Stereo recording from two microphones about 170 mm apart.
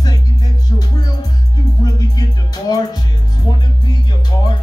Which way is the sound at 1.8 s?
20° left (ahead or behind).